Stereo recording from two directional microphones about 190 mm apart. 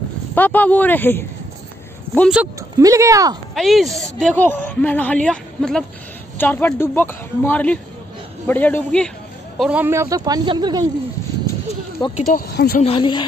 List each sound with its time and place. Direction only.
0.3 s a woman's voice: 10° left (ahead or behind)
2.1 s a woman's voice: centre (ahead or behind)
2.8 s speech: 15° right (ahead or behind)
3.5 s a woman's voice: centre (ahead or behind)
9.6 s speech: 5° right (ahead or behind)
12.2 s speech: 40° left (ahead or behind)
12.4 s a woman's voice: 55° left (ahead or behind)
12.8 s speech: 25° left (ahead or behind)